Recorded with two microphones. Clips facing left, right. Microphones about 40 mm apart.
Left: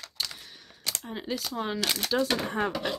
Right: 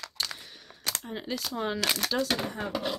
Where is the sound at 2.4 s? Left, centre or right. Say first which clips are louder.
Left 5 dB; left.